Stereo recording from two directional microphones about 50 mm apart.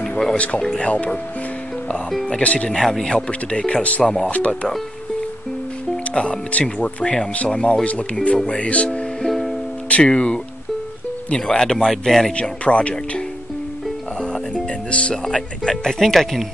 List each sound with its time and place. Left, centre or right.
0.7 s speech: left
2.2 s speech: left
2.7 s speech: centre
3.3 s speech: left
4.0 s speech: centre
4.3 s speech: left
6.1 s speech: left
9.3 s music: centre
9.8 s speech: left
12.4 s speech: left
14.5 s music: left
15.2 s speech: centre